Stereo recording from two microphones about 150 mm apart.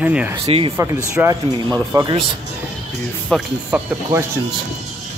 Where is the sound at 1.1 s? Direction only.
20° right (ahead or behind).